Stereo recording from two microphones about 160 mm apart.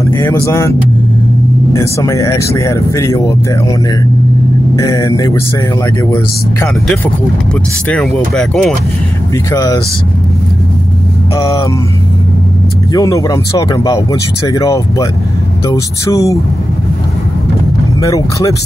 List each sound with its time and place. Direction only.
0.0 s speech: 20° left (ahead or behind)
4.7 s speech: 20° left (ahead or behind)
7.9 s speech: 5° left (ahead or behind)
9.5 s speech: 20° left (ahead or behind)
11.3 s speech: 20° left (ahead or behind)
12.9 s speech: 20° left (ahead or behind)
18.0 s speech: 20° left (ahead or behind)